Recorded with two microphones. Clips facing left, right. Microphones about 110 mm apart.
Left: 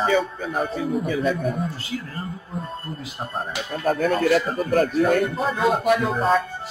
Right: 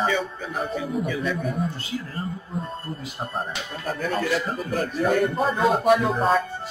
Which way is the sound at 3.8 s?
50° left (ahead or behind).